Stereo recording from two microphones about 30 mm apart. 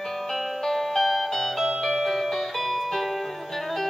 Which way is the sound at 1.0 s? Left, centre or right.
Centre.